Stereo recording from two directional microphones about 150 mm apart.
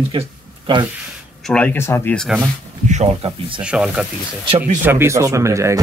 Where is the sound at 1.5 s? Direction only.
10° left (ahead or behind).